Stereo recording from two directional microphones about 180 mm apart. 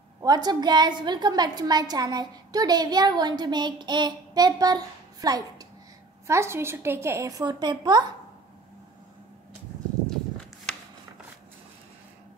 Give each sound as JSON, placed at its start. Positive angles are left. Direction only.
{"t": 0.2, "sound": "a woman's voice", "side_deg": -20}